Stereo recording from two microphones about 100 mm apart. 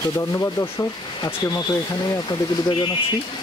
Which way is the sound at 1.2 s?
45° left (ahead or behind).